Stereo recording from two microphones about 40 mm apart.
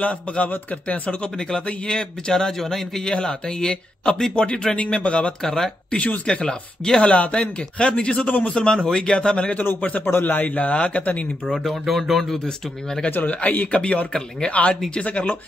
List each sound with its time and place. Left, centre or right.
0.0 s speech: left
1.2 s a man's voice: left
5.4 s a man's voice: centre
7.1 s speech: left
8.3 s speech: left
8.5 s speech: left
9.8 s a man's voice: left
10.0 s a man's voice: left
10.7 s speech: left
11.5 s speech: centre
12.4 s a man's voice: centre
13.2 s speech: left
14.5 s speech: left